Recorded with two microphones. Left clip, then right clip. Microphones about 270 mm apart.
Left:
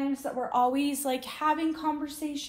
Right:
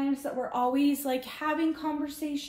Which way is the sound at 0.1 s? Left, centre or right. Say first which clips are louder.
Left 2 dB; centre.